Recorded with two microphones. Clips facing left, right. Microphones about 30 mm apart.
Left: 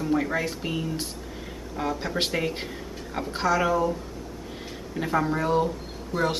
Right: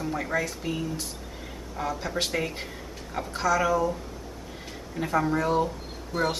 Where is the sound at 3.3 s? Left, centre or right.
Left.